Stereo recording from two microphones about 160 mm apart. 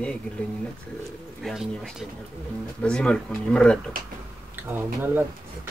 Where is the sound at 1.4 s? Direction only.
Centre (ahead or behind).